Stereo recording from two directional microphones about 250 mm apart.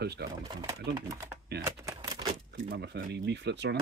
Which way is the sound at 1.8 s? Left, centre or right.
Centre.